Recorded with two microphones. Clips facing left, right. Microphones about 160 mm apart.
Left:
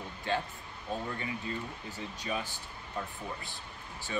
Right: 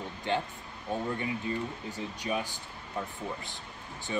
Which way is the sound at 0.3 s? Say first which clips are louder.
Right 2 dB; 20° right (ahead or behind).